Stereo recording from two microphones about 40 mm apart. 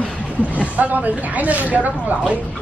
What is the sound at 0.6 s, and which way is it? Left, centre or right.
Speech, right.